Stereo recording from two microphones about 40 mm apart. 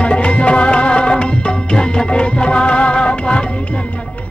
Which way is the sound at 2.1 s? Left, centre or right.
Left.